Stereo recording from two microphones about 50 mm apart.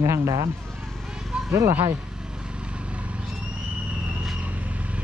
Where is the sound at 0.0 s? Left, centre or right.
Right.